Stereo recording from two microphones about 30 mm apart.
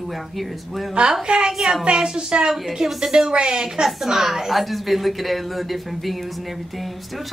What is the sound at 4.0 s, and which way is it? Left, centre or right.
A woman's voice, centre.